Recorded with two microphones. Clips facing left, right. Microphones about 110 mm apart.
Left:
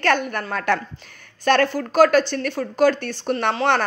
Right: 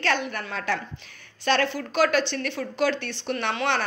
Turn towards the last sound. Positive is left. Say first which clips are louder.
# left 6 dB
turn(degrees=35)  # may be behind; listen again after turning